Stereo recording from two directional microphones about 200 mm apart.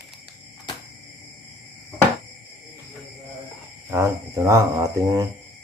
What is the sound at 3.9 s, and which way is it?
Speech, 15° right (ahead or behind).